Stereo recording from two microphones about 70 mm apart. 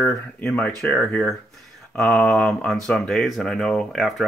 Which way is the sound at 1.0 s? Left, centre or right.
Centre.